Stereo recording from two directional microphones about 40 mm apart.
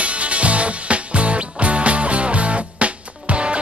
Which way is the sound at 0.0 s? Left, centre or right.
Right.